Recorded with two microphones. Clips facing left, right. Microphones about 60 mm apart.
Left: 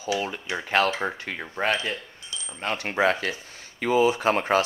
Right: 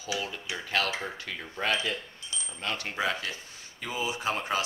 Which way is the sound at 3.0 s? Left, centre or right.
Left.